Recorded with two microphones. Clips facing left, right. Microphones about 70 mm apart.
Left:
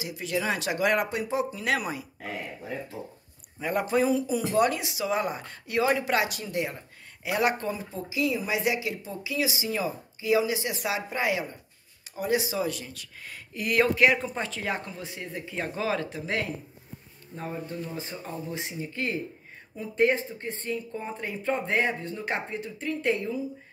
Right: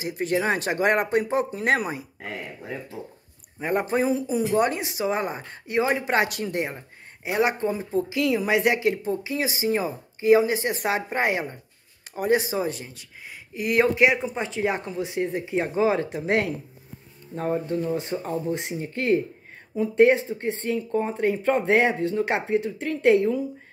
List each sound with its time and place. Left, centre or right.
0.0 s speech: right
3.6 s speech: right
6.2 s a woman's voice: right
7.2 s speech: right
8.1 s a woman's voice: right
17.4 s a woman's voice: right
19.7 s speech: right